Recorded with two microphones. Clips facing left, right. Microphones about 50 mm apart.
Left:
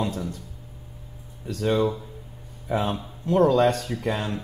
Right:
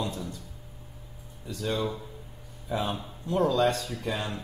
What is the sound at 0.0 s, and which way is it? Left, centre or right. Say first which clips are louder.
Speech: left 5 dB; left.